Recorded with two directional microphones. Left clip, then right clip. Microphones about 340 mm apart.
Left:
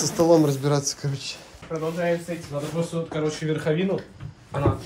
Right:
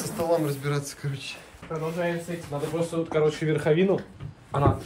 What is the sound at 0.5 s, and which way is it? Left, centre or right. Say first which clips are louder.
Speech: left 6 dB; centre.